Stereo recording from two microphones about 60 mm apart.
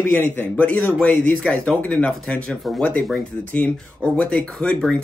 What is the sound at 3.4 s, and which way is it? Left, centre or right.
A man's voice, left.